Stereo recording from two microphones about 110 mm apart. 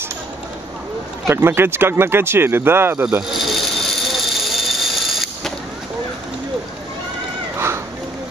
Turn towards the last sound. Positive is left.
turn(degrees=-25)  # may be behind; listen again after turning